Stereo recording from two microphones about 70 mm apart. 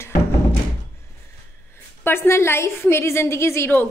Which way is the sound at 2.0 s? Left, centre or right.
Left.